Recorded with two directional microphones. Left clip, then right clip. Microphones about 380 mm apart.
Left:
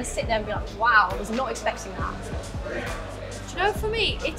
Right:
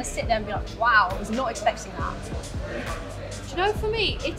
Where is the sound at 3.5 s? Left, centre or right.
Right.